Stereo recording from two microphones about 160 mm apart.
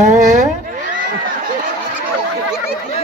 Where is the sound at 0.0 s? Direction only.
50° right (ahead or behind).